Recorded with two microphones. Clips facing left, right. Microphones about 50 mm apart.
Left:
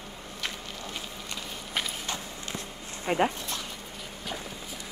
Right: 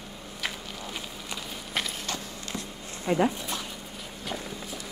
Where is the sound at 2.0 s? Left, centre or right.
Left.